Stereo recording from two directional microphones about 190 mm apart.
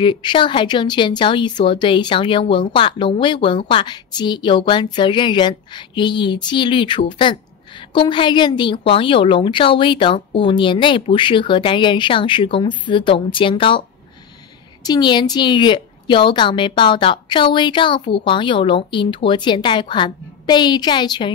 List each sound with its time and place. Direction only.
0.0 s speech: 25° left (ahead or behind)